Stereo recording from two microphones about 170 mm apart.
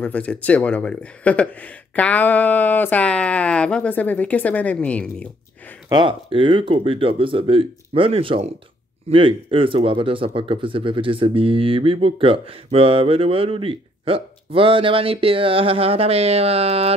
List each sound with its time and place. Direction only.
0.0 s speech: 10° left (ahead or behind)
5.9 s speech: 25° right (ahead or behind)